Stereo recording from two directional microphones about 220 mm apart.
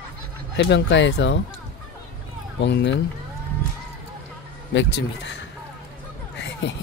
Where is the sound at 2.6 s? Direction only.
50° left (ahead or behind).